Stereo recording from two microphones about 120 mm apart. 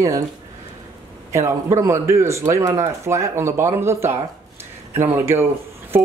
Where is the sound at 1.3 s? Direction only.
25° right (ahead or behind).